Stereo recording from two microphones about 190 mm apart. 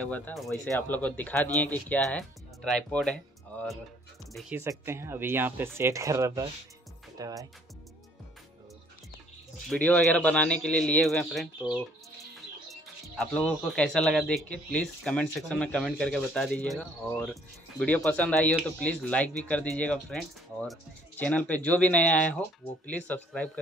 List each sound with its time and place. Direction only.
0.0 s speech: 10° left (ahead or behind)
4.4 s speech: 10° right (ahead or behind)
9.7 s speech: 5° left (ahead or behind)
13.1 s speech: 5° left (ahead or behind)